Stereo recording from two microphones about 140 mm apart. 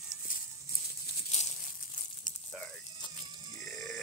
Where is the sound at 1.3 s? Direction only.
55° left (ahead or behind).